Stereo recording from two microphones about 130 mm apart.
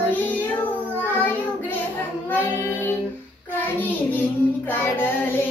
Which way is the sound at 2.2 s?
15° left (ahead or behind).